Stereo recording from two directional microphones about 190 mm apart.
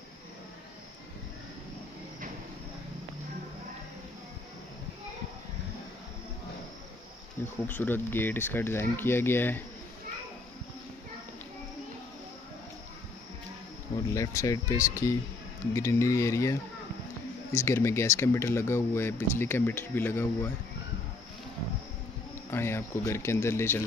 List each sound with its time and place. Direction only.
7.6 s speech: 10° left (ahead or behind)
14.1 s speech: 15° left (ahead or behind)
22.5 s speech: 15° left (ahead or behind)